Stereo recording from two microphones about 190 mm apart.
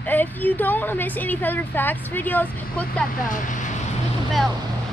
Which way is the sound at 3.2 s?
45° left (ahead or behind).